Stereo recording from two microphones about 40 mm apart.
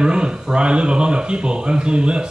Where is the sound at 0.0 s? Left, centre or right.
Right.